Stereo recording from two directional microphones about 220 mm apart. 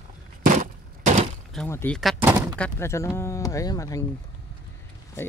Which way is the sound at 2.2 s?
15° right (ahead or behind).